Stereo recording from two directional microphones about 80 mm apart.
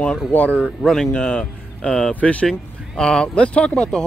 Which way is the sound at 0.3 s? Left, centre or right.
Left.